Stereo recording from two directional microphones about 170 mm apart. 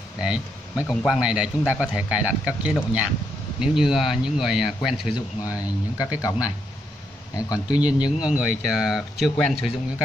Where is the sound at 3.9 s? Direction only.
5° right (ahead or behind).